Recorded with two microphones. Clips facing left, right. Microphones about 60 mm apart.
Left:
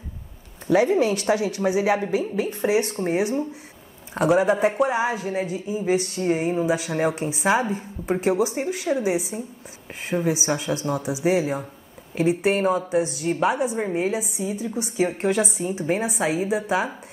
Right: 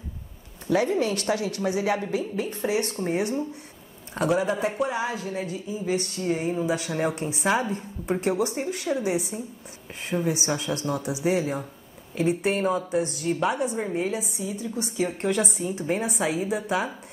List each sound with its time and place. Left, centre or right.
0.7 s speech: centre
4.4 s speech: left
6.6 s speech: centre
15.7 s speech: centre